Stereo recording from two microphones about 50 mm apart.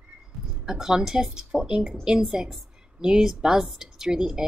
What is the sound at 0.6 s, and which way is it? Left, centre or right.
A woman's voice, centre.